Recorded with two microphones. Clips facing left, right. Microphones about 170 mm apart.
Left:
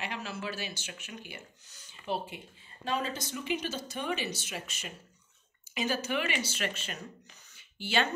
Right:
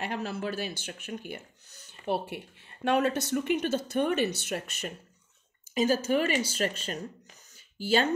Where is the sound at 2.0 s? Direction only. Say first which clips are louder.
Right 4 dB; 65° right (ahead or behind).